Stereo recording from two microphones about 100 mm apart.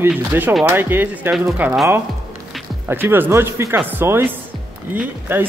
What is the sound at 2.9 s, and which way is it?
Speech, 20° right (ahead or behind).